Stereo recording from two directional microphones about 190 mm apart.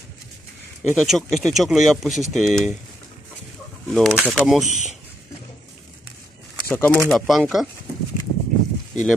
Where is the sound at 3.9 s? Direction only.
Centre (ahead or behind).